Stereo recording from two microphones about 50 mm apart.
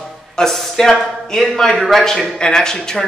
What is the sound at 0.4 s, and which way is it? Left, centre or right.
A man's voice, centre.